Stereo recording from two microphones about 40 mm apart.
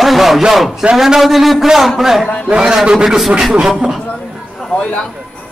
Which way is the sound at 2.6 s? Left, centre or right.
Centre.